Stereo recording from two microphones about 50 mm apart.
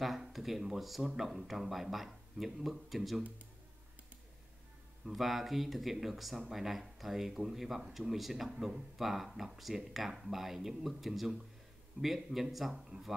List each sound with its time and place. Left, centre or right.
0.0 s speech: centre
5.0 s speech: centre